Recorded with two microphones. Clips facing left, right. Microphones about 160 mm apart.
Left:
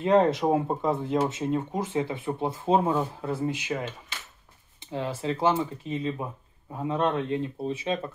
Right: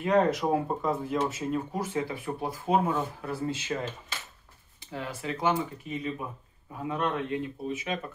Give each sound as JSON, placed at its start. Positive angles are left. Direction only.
{"t": 0.0, "sound": "speech", "side_deg": 25}
{"t": 4.7, "sound": "speech", "side_deg": 25}